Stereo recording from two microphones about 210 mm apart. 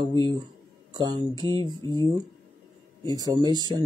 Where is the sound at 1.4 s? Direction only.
20° left (ahead or behind).